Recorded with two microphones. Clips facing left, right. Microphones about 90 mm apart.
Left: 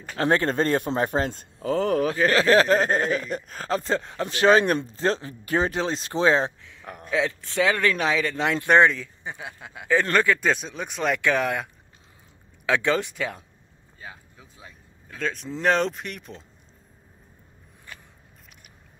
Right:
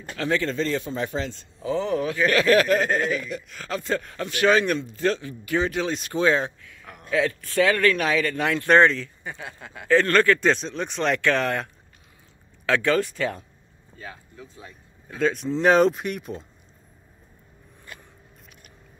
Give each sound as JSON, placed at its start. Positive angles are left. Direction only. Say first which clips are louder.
{"t": 0.1, "sound": "a man's voice", "louder": "left 3 dB", "side_deg": 40}
{"t": 2.0, "sound": "speech", "louder": "right 2 dB", "side_deg": 35}